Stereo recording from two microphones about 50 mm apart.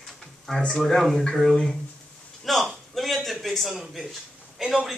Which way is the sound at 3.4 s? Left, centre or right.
Centre.